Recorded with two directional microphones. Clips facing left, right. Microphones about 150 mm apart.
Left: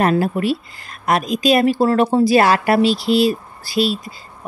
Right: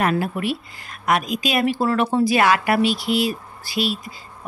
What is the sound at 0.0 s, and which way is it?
Speech, 35° left (ahead or behind).